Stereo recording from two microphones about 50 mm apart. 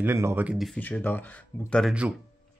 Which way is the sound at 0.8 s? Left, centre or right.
Left.